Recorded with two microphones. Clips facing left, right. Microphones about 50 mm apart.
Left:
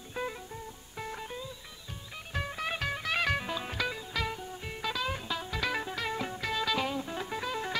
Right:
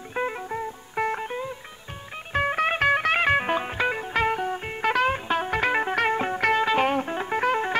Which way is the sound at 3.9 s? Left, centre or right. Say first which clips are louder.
Right 11 dB; right.